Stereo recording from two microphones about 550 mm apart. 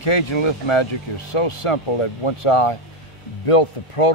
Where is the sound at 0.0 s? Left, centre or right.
Left.